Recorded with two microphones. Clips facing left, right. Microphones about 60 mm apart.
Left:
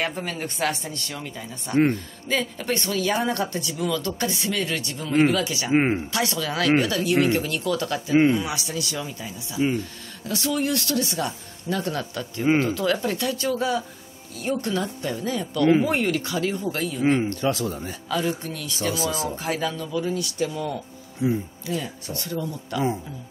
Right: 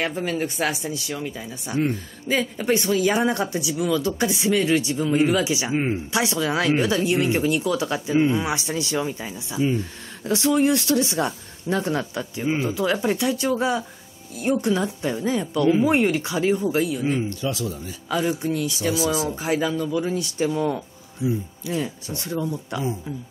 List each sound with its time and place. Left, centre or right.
0.0 s speech: centre
5.7 s speech: left
6.1 s speech: centre
8.4 s speech: right
16.6 s speech: centre
17.0 s speech: left
18.4 s speech: centre